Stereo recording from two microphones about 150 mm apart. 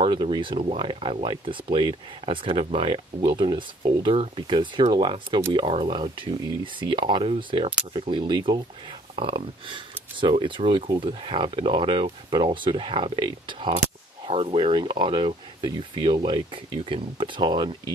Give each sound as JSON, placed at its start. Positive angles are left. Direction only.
{"t": 0.0, "sound": "speech", "side_deg": -35}